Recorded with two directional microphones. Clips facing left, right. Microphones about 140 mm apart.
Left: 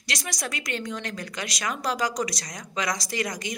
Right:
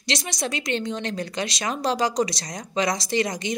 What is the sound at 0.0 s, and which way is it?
A woman's voice, 25° right (ahead or behind).